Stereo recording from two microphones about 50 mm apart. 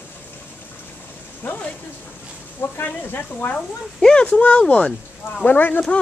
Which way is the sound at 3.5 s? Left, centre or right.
Centre.